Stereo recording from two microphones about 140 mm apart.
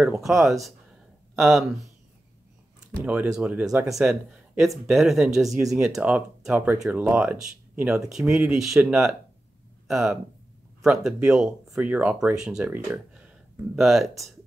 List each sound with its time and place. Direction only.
0.0 s speech: 5° right (ahead or behind)
3.0 s speech: 10° right (ahead or behind)